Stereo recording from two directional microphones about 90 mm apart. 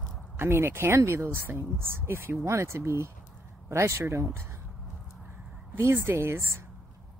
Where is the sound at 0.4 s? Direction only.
25° right (ahead or behind).